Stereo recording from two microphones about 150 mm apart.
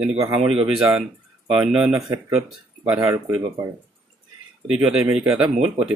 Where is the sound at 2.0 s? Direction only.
20° right (ahead or behind).